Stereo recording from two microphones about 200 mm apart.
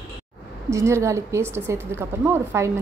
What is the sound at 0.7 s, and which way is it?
A woman's voice, 15° right (ahead or behind).